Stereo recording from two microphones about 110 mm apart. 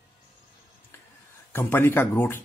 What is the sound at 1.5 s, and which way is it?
Speech, 20° left (ahead or behind).